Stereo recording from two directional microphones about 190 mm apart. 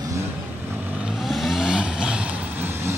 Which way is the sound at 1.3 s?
Centre (ahead or behind).